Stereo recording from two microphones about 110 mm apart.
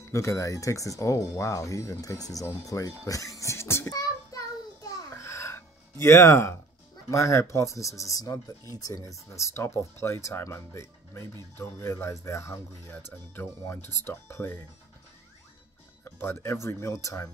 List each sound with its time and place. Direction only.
0.1 s speech: 25° left (ahead or behind)
3.1 s child singing: 30° left (ahead or behind)
7.1 s speech: 25° left (ahead or behind)
16.0 s speech: 20° left (ahead or behind)